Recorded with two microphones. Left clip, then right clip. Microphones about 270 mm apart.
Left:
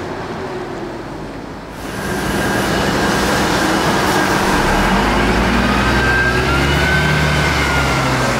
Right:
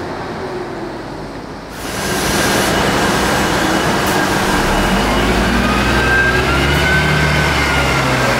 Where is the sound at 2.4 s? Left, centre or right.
Centre.